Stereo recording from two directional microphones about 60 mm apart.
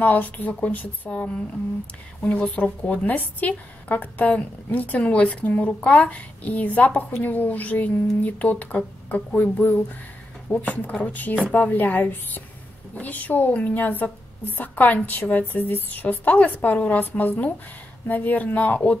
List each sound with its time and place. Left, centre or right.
0.0 s a woman's voice: left